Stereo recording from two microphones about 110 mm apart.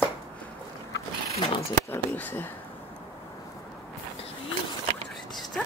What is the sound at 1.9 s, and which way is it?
Speech, 20° left (ahead or behind).